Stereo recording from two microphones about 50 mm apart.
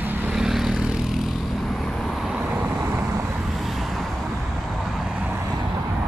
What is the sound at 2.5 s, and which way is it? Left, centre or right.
Vehicle, right.